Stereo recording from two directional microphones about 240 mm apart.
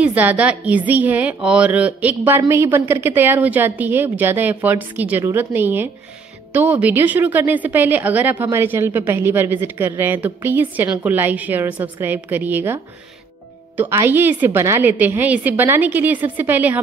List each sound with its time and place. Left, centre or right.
0.0 s a woman's voice: centre